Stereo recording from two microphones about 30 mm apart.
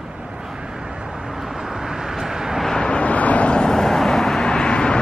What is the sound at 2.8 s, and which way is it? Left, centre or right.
Vehicle, left.